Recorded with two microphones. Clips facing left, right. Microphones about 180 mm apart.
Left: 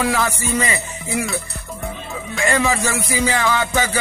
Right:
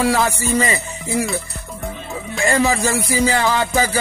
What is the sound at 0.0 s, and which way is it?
Music, 35° right (ahead or behind).